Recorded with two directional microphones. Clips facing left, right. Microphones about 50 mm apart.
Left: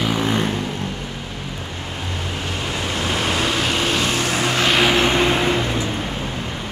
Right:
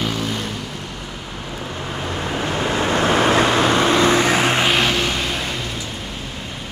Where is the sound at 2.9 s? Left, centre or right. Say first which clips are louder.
Right 7 dB; right.